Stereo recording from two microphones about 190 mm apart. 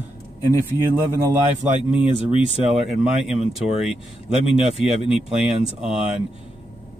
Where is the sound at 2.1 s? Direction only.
30° left (ahead or behind).